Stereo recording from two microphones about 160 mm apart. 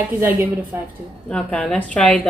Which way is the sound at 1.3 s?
5° left (ahead or behind).